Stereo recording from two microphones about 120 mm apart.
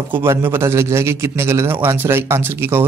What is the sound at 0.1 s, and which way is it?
A man's voice, 20° right (ahead or behind).